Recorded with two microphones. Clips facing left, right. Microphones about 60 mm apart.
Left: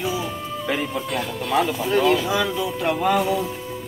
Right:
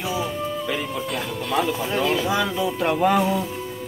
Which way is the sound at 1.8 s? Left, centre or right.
Centre.